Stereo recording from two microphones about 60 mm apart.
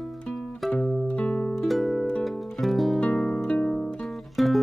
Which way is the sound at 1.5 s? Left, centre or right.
Centre.